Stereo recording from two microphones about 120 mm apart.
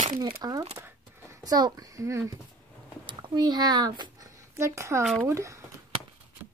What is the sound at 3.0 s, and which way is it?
Speech, 35° right (ahead or behind).